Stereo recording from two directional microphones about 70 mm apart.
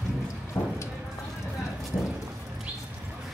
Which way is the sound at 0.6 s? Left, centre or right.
Left.